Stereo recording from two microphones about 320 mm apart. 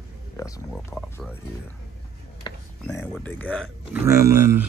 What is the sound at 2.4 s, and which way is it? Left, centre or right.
Speech, centre.